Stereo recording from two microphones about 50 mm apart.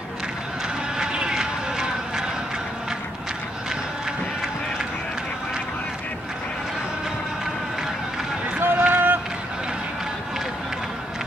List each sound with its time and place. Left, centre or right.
0.9 s vehicle: centre
8.5 s run: right